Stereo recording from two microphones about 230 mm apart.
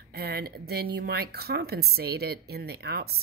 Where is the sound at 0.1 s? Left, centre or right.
Right.